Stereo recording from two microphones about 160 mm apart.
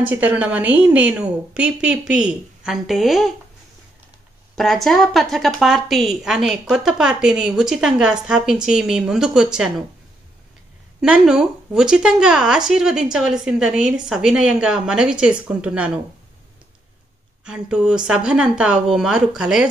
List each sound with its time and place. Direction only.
0.0 s a woman's voice: 10° right (ahead or behind)
4.6 s a woman's voice: centre (ahead or behind)
11.0 s a woman's voice: 5° right (ahead or behind)
17.5 s a woman's voice: 5° right (ahead or behind)